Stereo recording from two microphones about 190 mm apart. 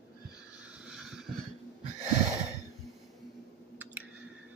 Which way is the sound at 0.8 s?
5° right (ahead or behind).